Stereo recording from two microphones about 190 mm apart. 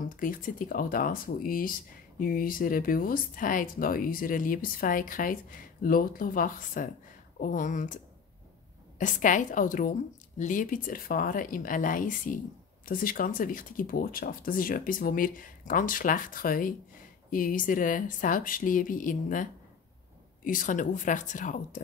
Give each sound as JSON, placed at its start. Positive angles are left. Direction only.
{"t": 0.0, "sound": "speech", "side_deg": 45}